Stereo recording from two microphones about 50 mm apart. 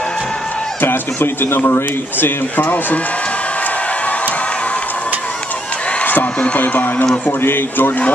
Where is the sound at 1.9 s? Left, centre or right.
Left.